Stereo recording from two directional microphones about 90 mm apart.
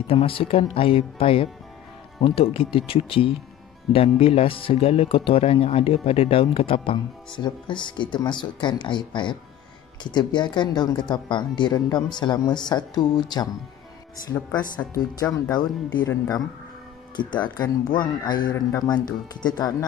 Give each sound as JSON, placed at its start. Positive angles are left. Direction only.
{"t": 0.0, "sound": "speech", "side_deg": 90}
{"t": 15.5, "sound": "speech", "side_deg": 50}
{"t": 17.2, "sound": "speech", "side_deg": 55}